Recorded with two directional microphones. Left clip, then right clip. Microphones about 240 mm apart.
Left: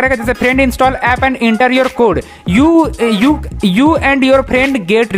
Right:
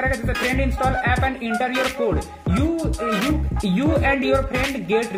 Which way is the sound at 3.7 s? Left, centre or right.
Left.